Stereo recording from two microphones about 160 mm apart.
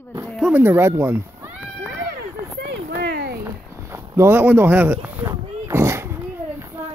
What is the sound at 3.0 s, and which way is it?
Cat, 85° right.